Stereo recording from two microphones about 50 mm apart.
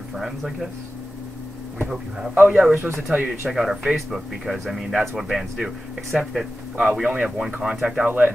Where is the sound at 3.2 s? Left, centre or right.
Centre.